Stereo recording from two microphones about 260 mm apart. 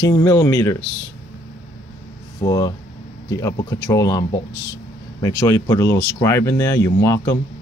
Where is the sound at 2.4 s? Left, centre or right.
Centre.